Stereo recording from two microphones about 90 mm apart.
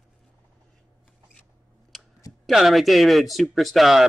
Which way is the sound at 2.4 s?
Centre (ahead or behind).